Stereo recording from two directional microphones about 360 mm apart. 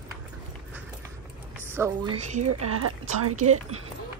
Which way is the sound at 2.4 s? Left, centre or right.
Right.